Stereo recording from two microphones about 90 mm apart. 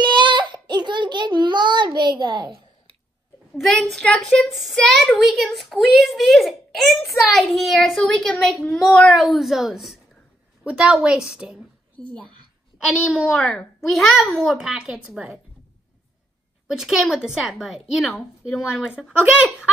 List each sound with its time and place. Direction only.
0.0 s child singing: 60° right (ahead or behind)
2.0 s a child's voice: 55° right (ahead or behind)
3.8 s a child's voice: 5° left (ahead or behind)
9.1 s a woman's voice: centre (ahead or behind)
12.7 s a woman's voice: 15° right (ahead or behind)
13.2 s a woman's voice: centre (ahead or behind)
16.6 s a woman's voice: 5° right (ahead or behind)